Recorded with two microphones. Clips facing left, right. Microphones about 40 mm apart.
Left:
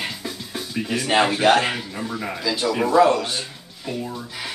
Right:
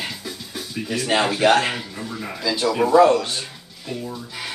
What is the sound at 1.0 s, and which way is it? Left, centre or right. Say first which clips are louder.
Speech: even; centre.